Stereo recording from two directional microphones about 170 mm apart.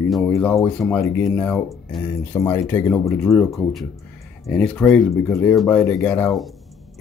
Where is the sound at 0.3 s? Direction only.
15° left (ahead or behind).